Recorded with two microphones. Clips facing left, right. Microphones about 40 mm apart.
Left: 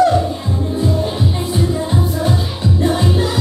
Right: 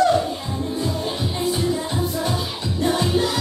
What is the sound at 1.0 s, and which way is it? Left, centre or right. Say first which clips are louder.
Music: left 3 dB; left.